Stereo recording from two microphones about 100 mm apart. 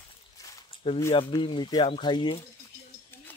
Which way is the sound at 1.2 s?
55° left (ahead or behind).